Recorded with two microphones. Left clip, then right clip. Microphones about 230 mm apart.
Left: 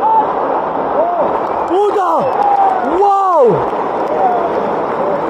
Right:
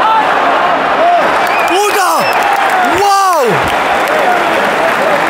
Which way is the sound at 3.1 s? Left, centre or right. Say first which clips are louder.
Right 2 dB; right.